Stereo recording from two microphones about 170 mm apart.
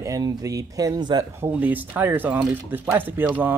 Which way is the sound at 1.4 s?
10° right (ahead or behind).